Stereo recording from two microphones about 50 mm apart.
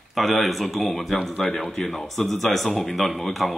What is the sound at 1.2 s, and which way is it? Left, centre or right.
Speech, centre.